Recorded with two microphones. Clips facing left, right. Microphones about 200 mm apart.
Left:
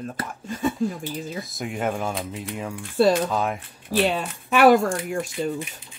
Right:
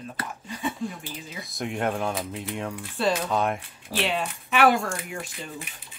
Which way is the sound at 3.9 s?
40° left (ahead or behind).